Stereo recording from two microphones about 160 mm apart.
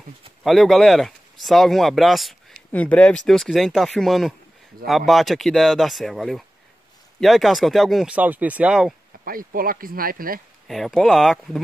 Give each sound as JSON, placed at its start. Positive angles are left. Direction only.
{"t": 0.4, "sound": "speech", "side_deg": 0}
{"t": 9.2, "sound": "speech", "side_deg": -65}
{"t": 10.7, "sound": "speech", "side_deg": 0}